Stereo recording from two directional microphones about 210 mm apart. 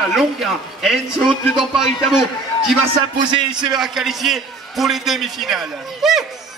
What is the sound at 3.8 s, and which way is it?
A man's voice, centre (ahead or behind).